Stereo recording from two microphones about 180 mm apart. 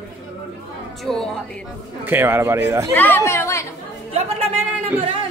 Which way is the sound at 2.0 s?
10° right (ahead or behind).